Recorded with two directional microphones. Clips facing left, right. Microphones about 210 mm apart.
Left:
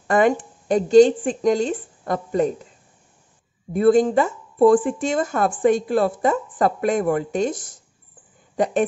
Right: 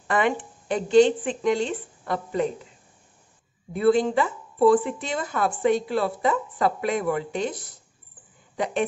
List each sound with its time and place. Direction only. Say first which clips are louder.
0.1 s speech: left 6 dB; 45° left (ahead or behind)
3.7 s speech: left 4 dB; 45° left (ahead or behind)